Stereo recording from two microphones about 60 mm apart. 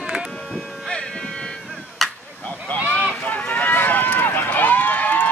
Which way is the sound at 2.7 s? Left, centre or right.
Left.